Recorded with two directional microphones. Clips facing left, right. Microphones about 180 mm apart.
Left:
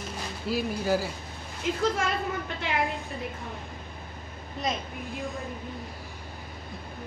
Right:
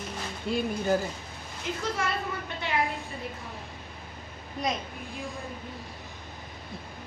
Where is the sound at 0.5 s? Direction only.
5° left (ahead or behind).